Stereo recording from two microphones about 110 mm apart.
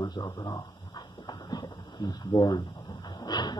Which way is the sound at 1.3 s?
40° left (ahead or behind).